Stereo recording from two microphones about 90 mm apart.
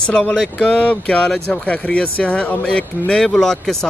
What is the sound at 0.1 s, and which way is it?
Speech, 10° left (ahead or behind).